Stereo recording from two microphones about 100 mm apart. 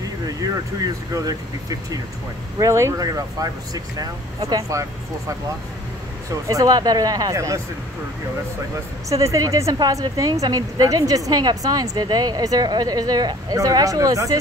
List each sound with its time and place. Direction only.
0.0 s vehicle: 40° right (ahead or behind)
1.1 s a woman's voice: 35° right (ahead or behind)
6.4 s a woman's voice: 35° right (ahead or behind)
9.1 s a woman's voice: 35° right (ahead or behind)